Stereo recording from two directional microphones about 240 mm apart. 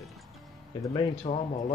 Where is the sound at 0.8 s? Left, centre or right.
Centre.